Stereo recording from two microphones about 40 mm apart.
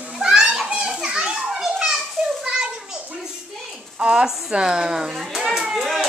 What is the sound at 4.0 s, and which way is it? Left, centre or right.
Speech, centre.